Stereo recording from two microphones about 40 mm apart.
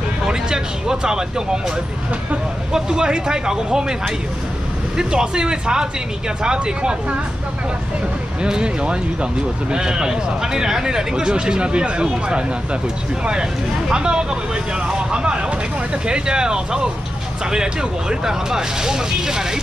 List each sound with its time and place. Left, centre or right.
0.3 s speech: centre
2.7 s speech: centre
4.9 s speech: right
8.4 s speech: right